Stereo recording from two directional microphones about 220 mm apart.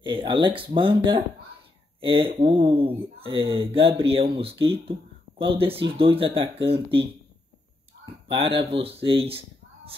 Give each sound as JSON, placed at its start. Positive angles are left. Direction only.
{"t": 0.0, "sound": "speech", "side_deg": -20}
{"t": 8.0, "sound": "a sound", "side_deg": -25}
{"t": 8.5, "sound": "speech", "side_deg": -25}